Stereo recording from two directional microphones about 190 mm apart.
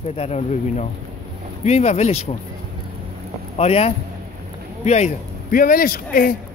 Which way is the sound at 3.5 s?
35° left (ahead or behind).